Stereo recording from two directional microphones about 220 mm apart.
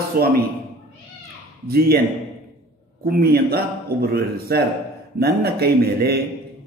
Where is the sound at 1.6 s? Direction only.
45° right (ahead or behind).